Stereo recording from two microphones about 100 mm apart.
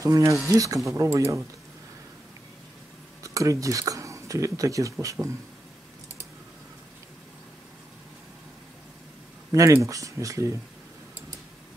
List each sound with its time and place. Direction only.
0.0 s speech: 30° right (ahead or behind)
3.3 s speech: 35° right (ahead or behind)
9.5 s speech: 30° right (ahead or behind)